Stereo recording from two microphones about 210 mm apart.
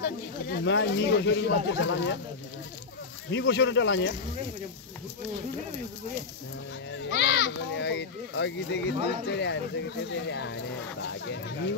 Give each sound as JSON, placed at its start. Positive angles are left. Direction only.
{"t": 0.0, "sound": "speech", "side_deg": 55}
{"t": 3.3, "sound": "speech", "side_deg": 55}
{"t": 6.9, "sound": "speech", "side_deg": 55}